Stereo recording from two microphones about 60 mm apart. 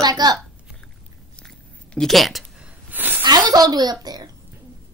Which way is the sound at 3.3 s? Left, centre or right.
Right.